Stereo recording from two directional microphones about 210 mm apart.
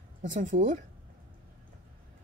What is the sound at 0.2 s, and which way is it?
Speech, 35° right (ahead or behind).